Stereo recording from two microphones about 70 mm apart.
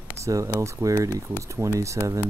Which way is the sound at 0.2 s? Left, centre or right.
Right.